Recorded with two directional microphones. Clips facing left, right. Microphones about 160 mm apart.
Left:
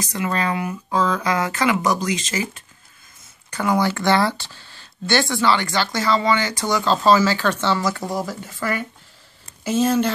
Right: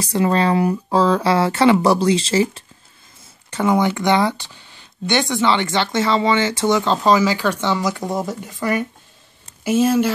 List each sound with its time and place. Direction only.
0.0 s speech: 30° right (ahead or behind); by 10.1 s 10° right (ahead or behind)